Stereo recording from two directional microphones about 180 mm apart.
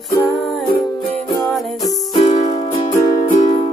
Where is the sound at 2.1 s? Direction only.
25° left (ahead or behind).